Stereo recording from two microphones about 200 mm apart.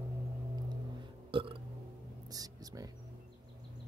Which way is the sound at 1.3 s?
25° right (ahead or behind).